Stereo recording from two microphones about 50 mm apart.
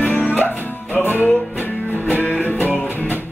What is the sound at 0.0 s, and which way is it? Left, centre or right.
Music, left.